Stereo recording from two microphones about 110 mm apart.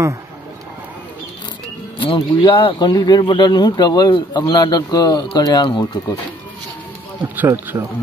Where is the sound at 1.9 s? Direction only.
45° left (ahead or behind).